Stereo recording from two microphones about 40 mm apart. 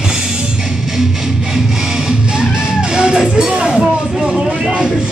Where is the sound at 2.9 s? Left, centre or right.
Right.